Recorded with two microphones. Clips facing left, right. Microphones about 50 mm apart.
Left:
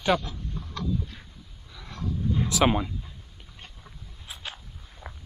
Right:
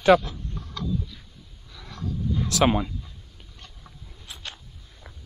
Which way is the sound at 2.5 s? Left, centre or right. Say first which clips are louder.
Right 2 dB; centre.